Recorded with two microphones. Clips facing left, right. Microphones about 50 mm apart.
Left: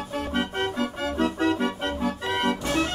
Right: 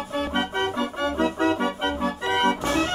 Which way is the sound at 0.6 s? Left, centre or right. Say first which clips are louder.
Right 2 dB; right.